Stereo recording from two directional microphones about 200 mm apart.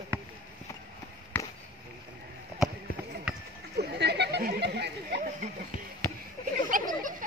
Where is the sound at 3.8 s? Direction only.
55° right (ahead or behind).